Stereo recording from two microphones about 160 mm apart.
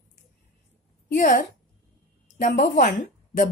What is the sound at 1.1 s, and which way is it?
A woman's voice, 55° left (ahead or behind).